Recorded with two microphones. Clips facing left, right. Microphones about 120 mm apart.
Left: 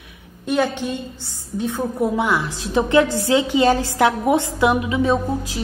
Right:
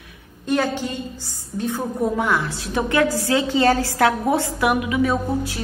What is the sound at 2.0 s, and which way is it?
A woman's voice, 15° left (ahead or behind).